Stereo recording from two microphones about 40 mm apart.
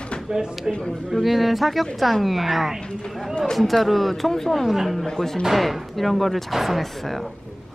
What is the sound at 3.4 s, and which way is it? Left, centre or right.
Speech, centre.